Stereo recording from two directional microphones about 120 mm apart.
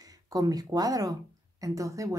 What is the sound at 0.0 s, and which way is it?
A woman's voice, 30° right (ahead or behind).